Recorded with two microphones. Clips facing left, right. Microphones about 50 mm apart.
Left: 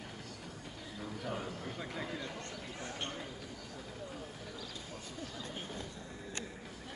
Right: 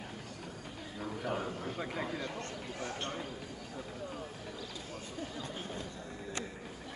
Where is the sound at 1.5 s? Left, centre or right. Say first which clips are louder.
Right 4 dB; centre.